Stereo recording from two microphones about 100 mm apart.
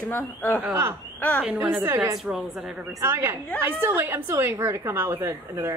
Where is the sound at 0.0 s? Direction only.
20° left (ahead or behind).